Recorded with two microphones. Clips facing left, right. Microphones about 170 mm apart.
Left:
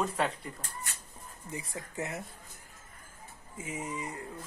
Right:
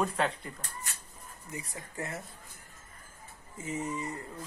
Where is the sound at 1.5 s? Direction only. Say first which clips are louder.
Left 2 dB; 25° left (ahead or behind).